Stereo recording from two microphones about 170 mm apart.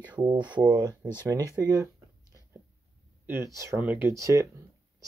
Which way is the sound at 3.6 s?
15° right (ahead or behind).